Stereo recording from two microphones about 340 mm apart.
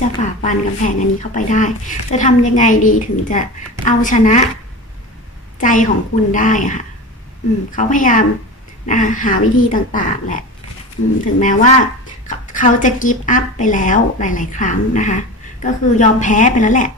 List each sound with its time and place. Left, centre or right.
0.2 s a woman's voice: left
5.6 s a woman's voice: left